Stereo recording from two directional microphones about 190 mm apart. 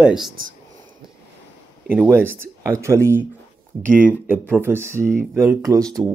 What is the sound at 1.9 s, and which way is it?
Speech, 10° right (ahead or behind).